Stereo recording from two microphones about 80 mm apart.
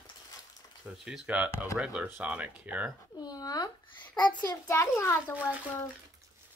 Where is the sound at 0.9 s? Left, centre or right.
Centre.